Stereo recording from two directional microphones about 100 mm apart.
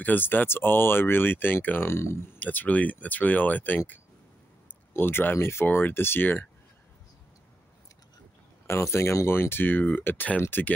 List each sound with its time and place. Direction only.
0.0 s speech: 20° left (ahead or behind)
8.6 s speech: 25° left (ahead or behind)